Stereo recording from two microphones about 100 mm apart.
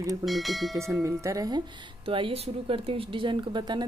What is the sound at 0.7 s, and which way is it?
Speech, 30° right (ahead or behind).